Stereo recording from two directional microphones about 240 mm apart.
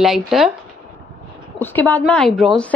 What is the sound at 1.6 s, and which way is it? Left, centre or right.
A woman's voice, centre.